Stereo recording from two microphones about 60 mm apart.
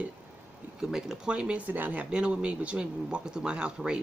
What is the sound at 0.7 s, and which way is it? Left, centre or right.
Speech, centre.